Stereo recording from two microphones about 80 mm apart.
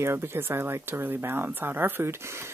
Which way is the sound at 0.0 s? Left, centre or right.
Right.